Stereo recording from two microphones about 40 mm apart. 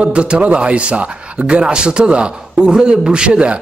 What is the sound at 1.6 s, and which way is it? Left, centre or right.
A man's voice, right.